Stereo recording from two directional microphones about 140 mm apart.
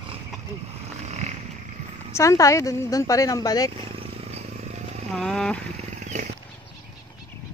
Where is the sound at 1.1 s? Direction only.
55° right (ahead or behind).